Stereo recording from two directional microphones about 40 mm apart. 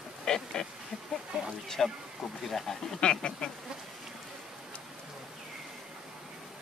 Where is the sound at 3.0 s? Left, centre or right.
Left.